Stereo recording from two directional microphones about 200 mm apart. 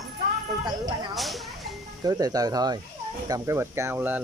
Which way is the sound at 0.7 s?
20° right (ahead or behind).